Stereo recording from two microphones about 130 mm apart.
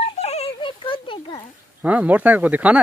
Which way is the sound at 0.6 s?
40° left (ahead or behind).